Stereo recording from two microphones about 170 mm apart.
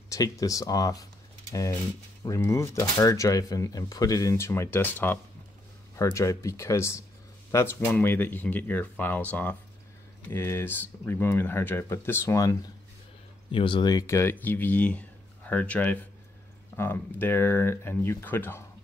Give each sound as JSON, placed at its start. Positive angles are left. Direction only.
{"t": 0.1, "sound": "speech", "side_deg": 20}
{"t": 13.5, "sound": "speech", "side_deg": 30}